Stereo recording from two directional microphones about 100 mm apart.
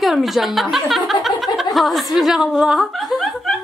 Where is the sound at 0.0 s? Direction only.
Centre (ahead or behind).